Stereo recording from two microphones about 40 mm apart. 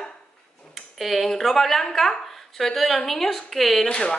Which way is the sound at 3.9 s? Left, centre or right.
Left.